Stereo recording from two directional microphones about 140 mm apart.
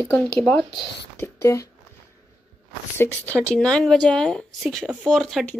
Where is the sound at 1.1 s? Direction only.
20° left (ahead or behind).